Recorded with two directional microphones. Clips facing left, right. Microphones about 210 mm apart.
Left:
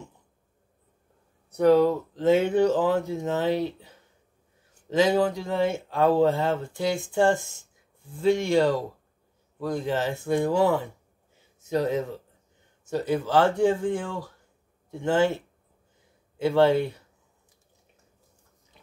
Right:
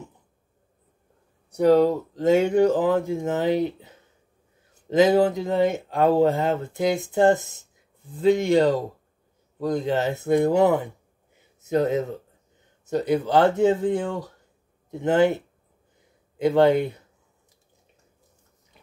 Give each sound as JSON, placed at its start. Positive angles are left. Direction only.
{"t": 1.9, "sound": "speech", "side_deg": -15}
{"t": 2.5, "sound": "speech", "side_deg": -50}
{"t": 3.1, "sound": "speech", "side_deg": -15}
{"t": 16.3, "sound": "speech", "side_deg": -20}